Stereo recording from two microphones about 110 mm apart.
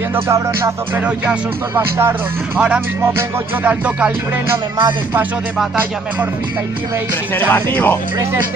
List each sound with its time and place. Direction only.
0.1 s music: 25° right (ahead or behind)
1.0 s music: 10° right (ahead or behind)
3.6 s music: 15° right (ahead or behind)
7.3 s speech: 20° left (ahead or behind)